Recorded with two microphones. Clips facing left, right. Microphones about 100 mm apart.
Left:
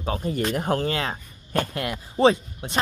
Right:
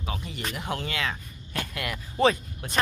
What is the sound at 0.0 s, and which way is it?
Speech, 40° left (ahead or behind).